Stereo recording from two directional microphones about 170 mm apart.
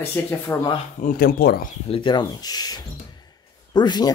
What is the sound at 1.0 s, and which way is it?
Speech, 60° left (ahead or behind).